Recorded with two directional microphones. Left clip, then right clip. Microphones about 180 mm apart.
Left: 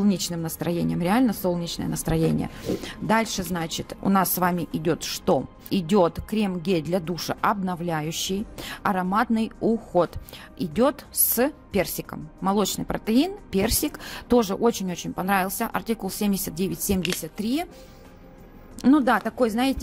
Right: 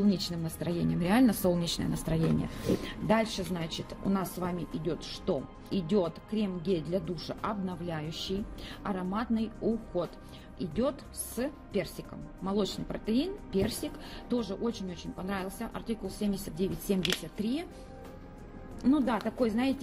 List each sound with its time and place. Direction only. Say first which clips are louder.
0.1 s speech: left 6 dB; 45° left (ahead or behind); by 1.9 s 20° left (ahead or behind)
2.1 s speech: left 9 dB; 45° left (ahead or behind)
10.6 s speech: left 9 dB; 50° left (ahead or behind)
18.9 s speech: left 9 dB; 50° left (ahead or behind)